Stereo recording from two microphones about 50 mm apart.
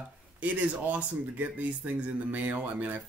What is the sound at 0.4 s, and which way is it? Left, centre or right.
Speech, right.